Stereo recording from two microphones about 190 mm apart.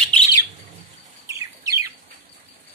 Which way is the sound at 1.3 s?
15° right (ahead or behind).